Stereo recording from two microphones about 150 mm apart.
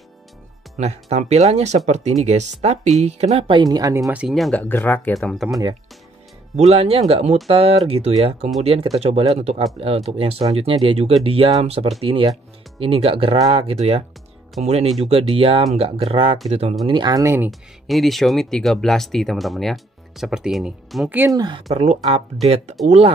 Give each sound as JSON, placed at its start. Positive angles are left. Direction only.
{"t": 0.7, "sound": "speech", "side_deg": -50}
{"t": 4.0, "sound": "speech", "side_deg": -5}
{"t": 4.6, "sound": "speech", "side_deg": 15}
{"t": 5.1, "sound": "speech", "side_deg": 0}
{"t": 6.5, "sound": "speech", "side_deg": -45}
{"t": 16.8, "sound": "speech", "side_deg": -30}
{"t": 17.5, "sound": "speech", "side_deg": 0}
{"t": 21.3, "sound": "speech", "side_deg": -30}
{"t": 21.8, "sound": "speech", "side_deg": -45}